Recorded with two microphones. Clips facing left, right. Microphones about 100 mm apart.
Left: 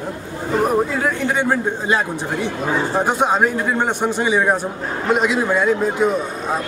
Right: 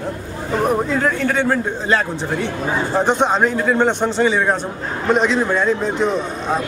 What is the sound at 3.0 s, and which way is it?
A man's voice, 10° left (ahead or behind).